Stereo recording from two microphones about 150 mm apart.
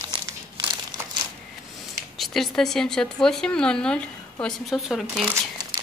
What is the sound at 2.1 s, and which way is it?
Speech, centre (ahead or behind).